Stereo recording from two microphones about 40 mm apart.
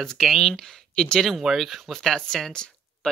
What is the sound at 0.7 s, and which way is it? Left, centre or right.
Speech, centre.